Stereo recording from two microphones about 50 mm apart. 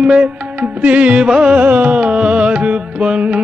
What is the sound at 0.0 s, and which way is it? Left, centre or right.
Music, right.